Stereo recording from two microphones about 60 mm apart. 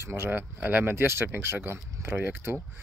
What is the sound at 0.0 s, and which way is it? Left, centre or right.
Speech, right.